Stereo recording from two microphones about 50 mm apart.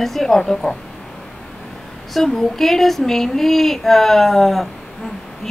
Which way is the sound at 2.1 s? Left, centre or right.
Centre.